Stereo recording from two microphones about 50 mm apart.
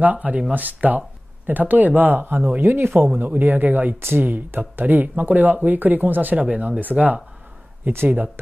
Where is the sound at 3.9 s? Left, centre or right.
Right.